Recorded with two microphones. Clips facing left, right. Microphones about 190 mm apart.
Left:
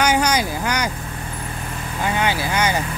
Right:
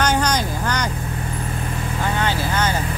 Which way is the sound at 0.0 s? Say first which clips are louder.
Left 1 dB; 10° left (ahead or behind).